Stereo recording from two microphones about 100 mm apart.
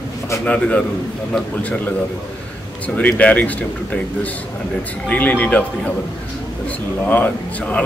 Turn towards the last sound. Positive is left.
turn(degrees=15)  # may be behind; listen again after turning